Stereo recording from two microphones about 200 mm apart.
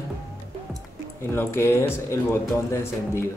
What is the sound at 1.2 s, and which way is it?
Speech, 10° left (ahead or behind).